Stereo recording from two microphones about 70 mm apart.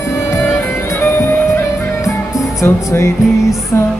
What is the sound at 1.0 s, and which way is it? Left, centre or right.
Music, left.